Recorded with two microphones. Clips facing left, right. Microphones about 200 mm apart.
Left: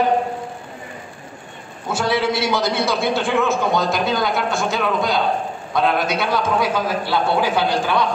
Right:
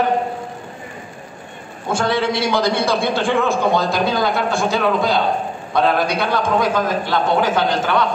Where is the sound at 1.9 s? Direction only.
5° left (ahead or behind).